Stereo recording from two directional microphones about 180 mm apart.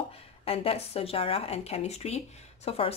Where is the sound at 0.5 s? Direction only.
35° left (ahead or behind).